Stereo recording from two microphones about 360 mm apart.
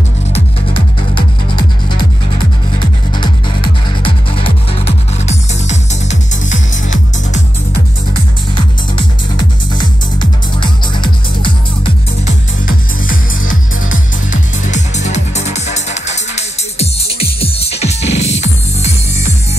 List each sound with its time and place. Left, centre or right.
0.3 s music: centre
4.0 s music: centre
10.6 s music: centre
13.5 s music: left